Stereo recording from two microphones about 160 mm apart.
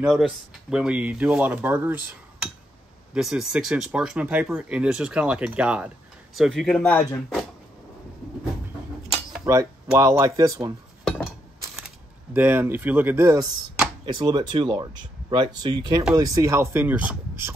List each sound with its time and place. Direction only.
0.0 s speech: centre (ahead or behind)
3.2 s speech: 5° right (ahead or behind)
6.9 s speech: 15° left (ahead or behind)
9.4 s speech: 20° right (ahead or behind)
12.4 s speech: 10° right (ahead or behind)
14.0 s speech: 25° right (ahead or behind); by 17.6 s 10° right (ahead or behind)